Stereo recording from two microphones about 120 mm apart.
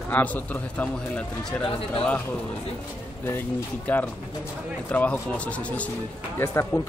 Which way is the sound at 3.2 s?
15° left (ahead or behind).